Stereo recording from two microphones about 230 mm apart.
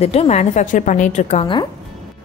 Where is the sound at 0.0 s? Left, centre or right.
Left.